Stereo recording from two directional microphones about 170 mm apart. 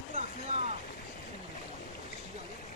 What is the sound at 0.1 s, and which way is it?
Vehicle, 45° right (ahead or behind).